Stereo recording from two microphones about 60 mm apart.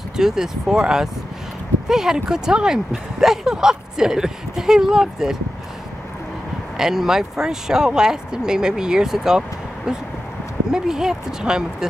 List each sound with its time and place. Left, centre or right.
0.2 s speech: centre
6.8 s speech: centre